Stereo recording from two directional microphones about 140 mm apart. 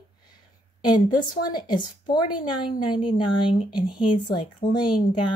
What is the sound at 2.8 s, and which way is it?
Speech, 35° left (ahead or behind).